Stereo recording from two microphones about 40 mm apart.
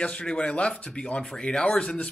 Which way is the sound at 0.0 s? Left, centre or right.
Left.